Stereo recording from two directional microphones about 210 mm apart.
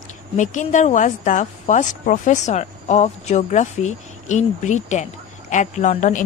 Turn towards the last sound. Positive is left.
turn(degrees=35)  # may be behind; listen again after turning